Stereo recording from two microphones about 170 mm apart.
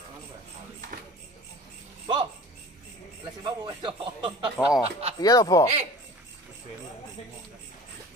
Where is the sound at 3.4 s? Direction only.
25° right (ahead or behind).